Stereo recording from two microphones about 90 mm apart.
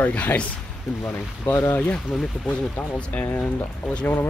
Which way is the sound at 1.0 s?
25° left (ahead or behind).